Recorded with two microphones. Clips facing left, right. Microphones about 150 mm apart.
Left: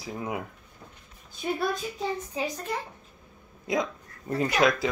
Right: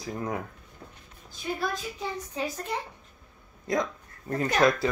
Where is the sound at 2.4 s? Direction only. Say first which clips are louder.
Right 1 dB; 10° right (ahead or behind).